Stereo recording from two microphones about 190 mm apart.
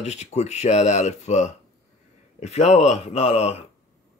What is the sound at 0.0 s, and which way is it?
Speech, 35° left (ahead or behind).